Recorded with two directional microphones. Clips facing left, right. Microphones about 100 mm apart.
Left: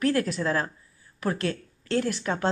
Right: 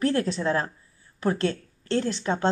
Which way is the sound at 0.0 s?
30° right (ahead or behind).